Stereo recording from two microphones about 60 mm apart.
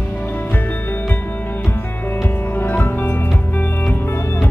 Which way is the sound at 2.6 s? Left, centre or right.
Left.